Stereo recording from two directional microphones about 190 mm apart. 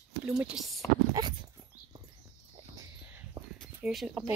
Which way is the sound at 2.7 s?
15° right (ahead or behind).